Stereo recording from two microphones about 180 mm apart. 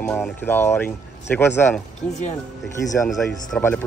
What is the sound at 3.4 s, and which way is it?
Speech, 10° left (ahead or behind).